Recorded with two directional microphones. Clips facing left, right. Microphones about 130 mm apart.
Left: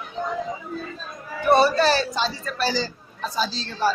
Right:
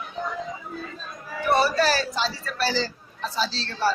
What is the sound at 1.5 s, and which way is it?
A woman's voice, 25° left (ahead or behind).